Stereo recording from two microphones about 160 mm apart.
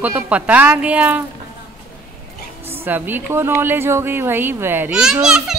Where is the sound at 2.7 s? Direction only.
10° right (ahead or behind).